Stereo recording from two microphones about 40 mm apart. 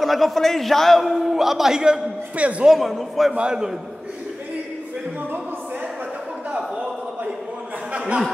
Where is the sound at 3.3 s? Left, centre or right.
Right.